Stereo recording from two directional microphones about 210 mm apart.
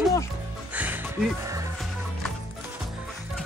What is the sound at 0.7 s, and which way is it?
Music, 10° right (ahead or behind).